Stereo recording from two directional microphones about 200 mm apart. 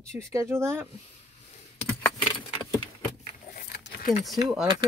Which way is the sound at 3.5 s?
50° left (ahead or behind).